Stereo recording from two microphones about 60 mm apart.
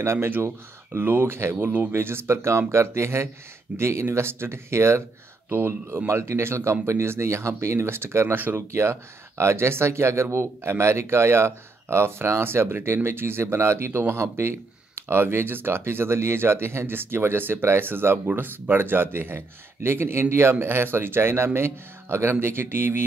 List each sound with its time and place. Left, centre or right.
0.0 s speech: right